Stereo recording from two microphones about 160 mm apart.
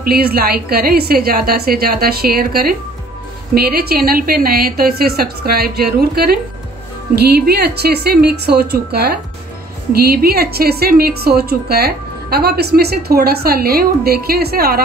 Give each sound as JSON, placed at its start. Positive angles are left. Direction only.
{"t": 0.0, "sound": "a woman's voice", "side_deg": -70}